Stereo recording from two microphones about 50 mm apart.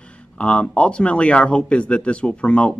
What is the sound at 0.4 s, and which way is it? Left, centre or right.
Speech, left.